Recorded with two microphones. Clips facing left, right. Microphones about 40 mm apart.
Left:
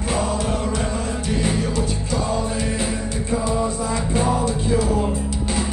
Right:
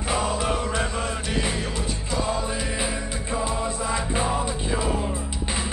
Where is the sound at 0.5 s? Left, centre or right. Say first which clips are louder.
Left 2 dB; right.